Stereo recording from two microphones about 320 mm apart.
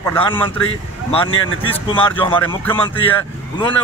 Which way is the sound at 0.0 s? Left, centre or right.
Centre.